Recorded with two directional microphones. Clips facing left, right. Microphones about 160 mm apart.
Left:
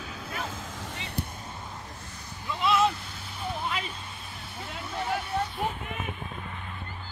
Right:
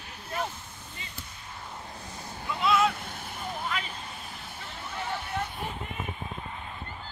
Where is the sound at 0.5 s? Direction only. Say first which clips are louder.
Left 7 dB; 90° left; by 1.3 s 70° left (ahead or behind).